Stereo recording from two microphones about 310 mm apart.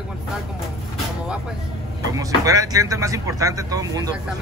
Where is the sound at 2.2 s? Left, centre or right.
Centre.